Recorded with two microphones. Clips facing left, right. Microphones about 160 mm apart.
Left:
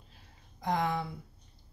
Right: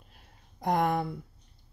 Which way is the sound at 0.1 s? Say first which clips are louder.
Even; 55° right (ahead or behind).